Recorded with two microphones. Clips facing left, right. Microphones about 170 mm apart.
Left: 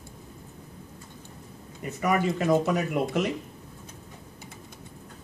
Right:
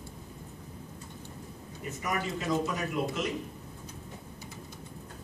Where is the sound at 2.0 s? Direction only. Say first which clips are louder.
Left 9 dB; 60° left (ahead or behind).